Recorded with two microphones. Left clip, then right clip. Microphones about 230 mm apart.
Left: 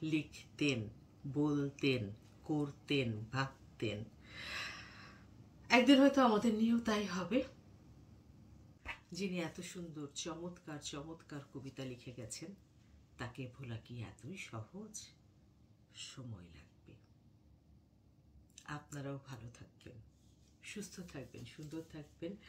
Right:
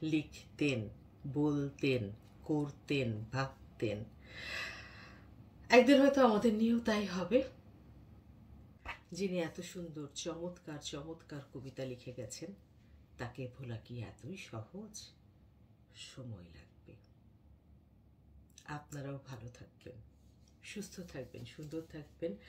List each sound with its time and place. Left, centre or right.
0.0 s speech: centre
8.8 s speech: centre
18.5 s speech: centre